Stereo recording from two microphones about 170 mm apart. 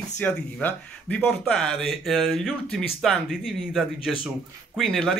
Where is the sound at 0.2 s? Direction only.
10° left (ahead or behind).